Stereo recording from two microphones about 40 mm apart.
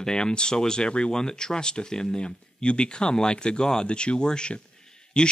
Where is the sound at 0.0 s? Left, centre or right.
Centre.